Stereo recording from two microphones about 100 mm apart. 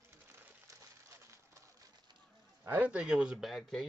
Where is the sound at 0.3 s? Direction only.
25° right (ahead or behind).